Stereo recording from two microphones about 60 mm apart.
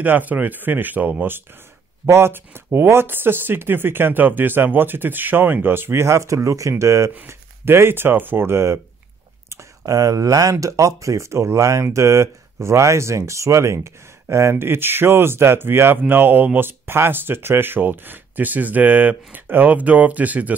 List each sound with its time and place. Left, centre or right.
0.0 s speech: right
2.0 s speech: right
7.2 s speech: right
9.8 s speech: right